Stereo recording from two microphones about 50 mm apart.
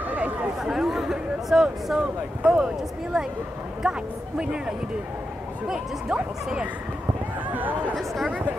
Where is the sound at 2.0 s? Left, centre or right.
Centre.